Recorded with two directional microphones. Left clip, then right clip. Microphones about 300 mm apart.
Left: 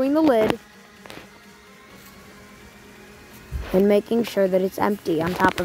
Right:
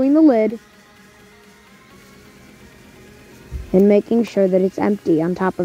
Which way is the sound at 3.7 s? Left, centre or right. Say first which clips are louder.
Right 4 dB; centre.